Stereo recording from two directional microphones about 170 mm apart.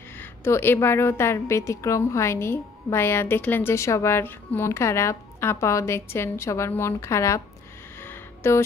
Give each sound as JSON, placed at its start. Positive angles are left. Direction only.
{"t": 0.2, "sound": "a woman's voice", "side_deg": 15}
{"t": 8.0, "sound": "music", "side_deg": 15}